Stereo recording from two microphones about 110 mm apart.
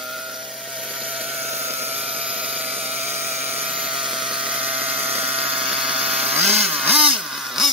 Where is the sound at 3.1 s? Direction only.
15° right (ahead or behind).